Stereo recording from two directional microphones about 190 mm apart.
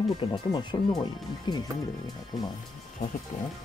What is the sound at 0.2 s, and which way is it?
Speech, 25° left (ahead or behind).